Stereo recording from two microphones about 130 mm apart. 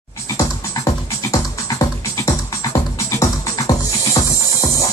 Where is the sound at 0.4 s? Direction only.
25° left (ahead or behind).